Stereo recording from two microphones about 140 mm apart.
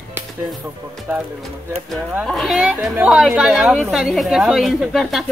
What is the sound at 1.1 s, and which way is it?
Speech, 15° right (ahead or behind).